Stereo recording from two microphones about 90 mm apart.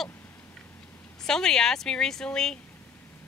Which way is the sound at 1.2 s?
5° left (ahead or behind).